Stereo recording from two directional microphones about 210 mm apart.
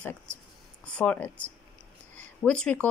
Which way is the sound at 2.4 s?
5° left (ahead or behind).